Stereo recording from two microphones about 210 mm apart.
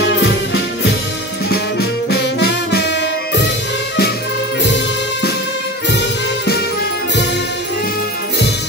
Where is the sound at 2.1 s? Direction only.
50° left (ahead or behind).